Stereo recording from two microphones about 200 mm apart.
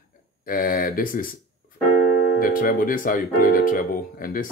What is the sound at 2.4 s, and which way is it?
Speech, 45° left (ahead or behind).